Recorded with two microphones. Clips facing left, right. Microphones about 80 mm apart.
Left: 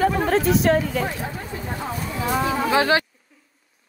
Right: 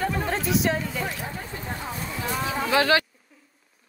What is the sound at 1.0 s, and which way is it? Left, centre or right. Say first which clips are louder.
Speech: left 4 dB; left.